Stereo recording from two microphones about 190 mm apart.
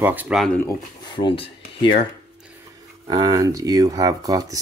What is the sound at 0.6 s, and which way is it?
Speech, 25° left (ahead or behind).